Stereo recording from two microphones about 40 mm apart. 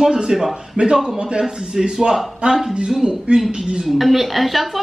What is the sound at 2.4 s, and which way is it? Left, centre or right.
Speech, right.